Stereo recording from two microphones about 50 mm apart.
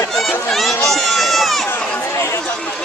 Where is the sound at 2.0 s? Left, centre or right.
Left.